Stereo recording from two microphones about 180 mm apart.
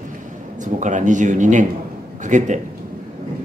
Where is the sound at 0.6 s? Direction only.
45° right (ahead or behind).